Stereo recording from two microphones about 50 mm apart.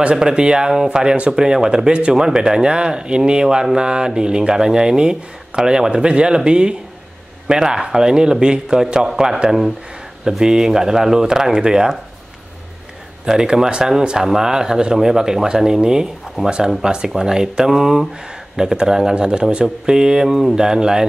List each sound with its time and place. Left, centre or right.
0.0 s speech: centre
13.2 s speech: centre